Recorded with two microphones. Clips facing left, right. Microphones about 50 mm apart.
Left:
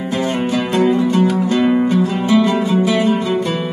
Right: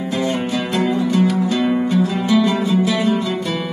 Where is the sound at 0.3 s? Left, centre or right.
Left.